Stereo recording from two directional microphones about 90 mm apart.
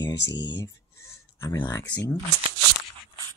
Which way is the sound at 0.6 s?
30° left (ahead or behind).